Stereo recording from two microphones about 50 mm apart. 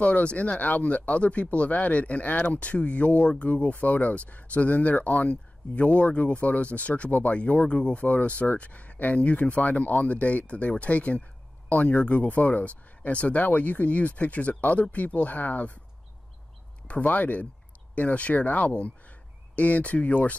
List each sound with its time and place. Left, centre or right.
0.0 s speech: left
16.8 s speech: left